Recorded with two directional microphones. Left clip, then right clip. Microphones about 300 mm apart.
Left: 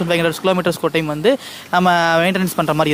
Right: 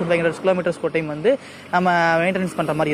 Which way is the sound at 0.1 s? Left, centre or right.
Left.